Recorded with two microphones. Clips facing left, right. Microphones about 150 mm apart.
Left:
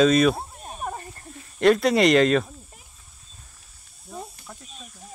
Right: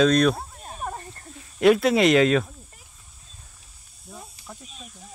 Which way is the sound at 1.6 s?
5° right (ahead or behind).